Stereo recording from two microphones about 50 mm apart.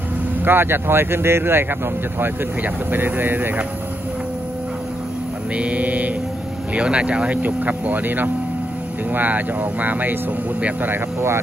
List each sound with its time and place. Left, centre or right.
0.5 s speech: right
5.6 s speech: right
11.1 s speech: right